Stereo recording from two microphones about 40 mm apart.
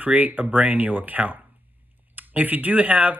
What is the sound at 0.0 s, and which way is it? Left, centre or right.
A man's voice, right.